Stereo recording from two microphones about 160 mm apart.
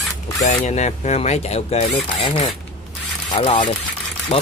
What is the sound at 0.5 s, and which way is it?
A man's voice, 45° left (ahead or behind).